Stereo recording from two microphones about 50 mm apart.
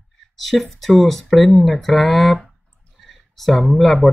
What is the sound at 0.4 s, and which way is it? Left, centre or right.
Speech, centre.